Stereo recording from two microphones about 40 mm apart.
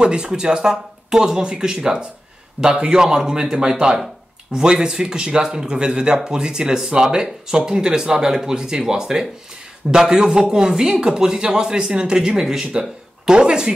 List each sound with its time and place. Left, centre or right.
0.0 s speech: right
2.6 s a man's voice: right
2.9 s speech: centre